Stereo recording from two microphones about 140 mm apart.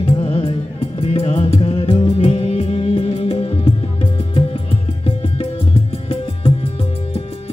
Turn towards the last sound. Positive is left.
turn(degrees=45)  # may be behind; listen again after turning